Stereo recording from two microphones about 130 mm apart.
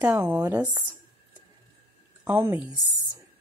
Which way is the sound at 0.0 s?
15° right (ahead or behind).